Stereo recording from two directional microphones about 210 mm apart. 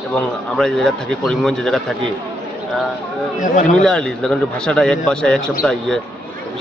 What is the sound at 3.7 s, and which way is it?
A man's voice, 5° left (ahead or behind).